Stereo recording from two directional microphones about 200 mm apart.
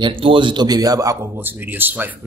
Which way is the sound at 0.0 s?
25° right (ahead or behind).